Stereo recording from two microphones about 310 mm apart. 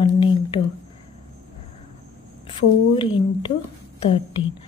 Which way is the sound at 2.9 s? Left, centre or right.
Centre.